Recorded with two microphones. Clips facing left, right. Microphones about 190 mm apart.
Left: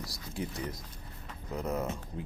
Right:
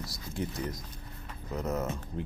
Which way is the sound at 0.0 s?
35° left (ahead or behind).